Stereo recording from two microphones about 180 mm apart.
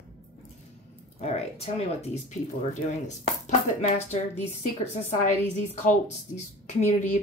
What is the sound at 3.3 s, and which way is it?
A woman's voice, 35° left (ahead or behind).